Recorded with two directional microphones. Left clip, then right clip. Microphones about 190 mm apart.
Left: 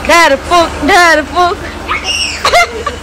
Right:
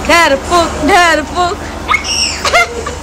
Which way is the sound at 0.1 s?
10° right (ahead or behind).